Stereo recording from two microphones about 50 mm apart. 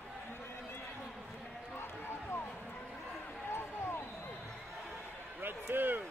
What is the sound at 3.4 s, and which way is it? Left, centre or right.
Basketball bounce, left.